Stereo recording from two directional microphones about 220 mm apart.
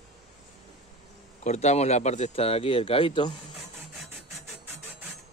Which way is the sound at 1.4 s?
30° left (ahead or behind).